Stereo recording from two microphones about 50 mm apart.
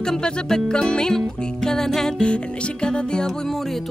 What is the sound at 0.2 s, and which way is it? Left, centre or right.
Music, centre.